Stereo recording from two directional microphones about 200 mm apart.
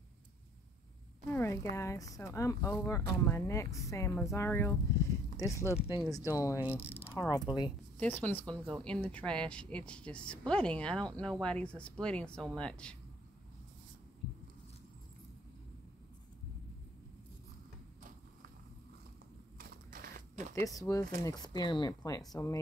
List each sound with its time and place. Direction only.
1.3 s speech: 15° left (ahead or behind)
6.8 s speech: 30° left (ahead or behind)
8.0 s speech: 10° left (ahead or behind)
19.6 s a sound: 45° right (ahead or behind)
20.5 s speech: 15° left (ahead or behind)